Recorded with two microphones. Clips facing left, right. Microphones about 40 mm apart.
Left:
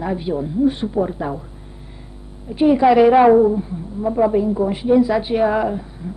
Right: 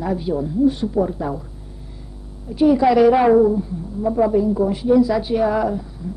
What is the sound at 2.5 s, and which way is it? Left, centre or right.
A woman's voice, left.